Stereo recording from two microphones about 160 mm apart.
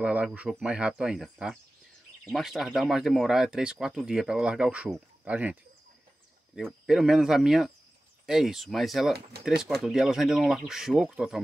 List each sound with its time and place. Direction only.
0.0 s speech: 10° right (ahead or behind)
9.3 s speech: 90° right
9.8 s speech: centre (ahead or behind)